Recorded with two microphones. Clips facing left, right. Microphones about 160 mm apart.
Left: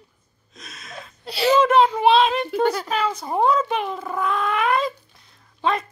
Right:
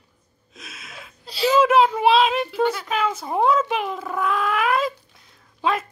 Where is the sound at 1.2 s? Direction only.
65° left (ahead or behind).